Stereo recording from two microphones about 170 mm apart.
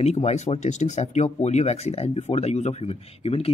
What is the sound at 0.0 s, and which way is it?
Speech, 40° left (ahead or behind).